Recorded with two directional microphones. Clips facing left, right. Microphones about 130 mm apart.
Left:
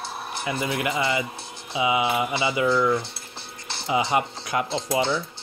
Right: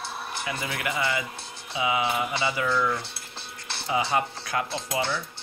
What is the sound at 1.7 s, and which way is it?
Mantra, 20° left (ahead or behind).